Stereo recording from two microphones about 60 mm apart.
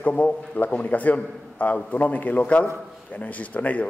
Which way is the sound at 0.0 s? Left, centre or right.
Left.